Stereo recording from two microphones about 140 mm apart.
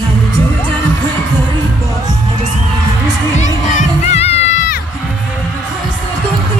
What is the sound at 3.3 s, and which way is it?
Speech, 60° left (ahead or behind).